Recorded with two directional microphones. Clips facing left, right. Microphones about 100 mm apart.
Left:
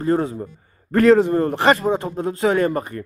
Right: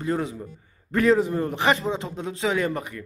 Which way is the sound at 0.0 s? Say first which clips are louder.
Left 7 dB; 45° left (ahead or behind).